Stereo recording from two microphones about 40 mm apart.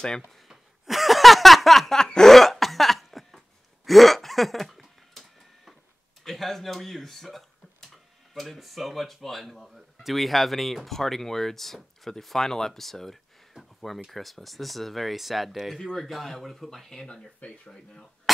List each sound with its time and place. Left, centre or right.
0.5 s a sound: centre
2.0 s cough: centre
6.2 s speech: centre
15.8 s speech: centre
16.1 s speech: centre
17.5 s speech: centre